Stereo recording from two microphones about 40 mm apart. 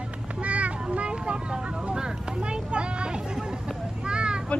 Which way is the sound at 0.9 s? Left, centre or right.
Right.